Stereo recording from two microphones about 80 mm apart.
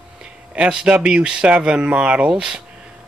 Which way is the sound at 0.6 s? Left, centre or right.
Centre.